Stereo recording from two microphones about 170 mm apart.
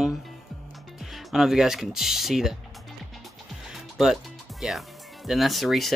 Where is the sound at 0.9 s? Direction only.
Centre (ahead or behind).